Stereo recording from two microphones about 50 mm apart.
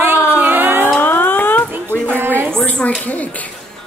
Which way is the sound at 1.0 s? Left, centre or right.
Left.